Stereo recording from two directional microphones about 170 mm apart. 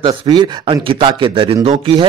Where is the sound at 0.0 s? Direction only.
25° right (ahead or behind).